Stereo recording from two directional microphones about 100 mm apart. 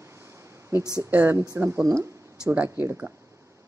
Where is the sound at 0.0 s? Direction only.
25° right (ahead or behind).